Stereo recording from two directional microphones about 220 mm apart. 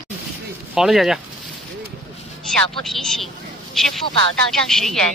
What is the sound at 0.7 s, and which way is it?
Speech, centre (ahead or behind).